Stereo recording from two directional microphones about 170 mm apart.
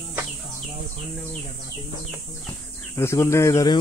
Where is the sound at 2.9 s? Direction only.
15° left (ahead or behind).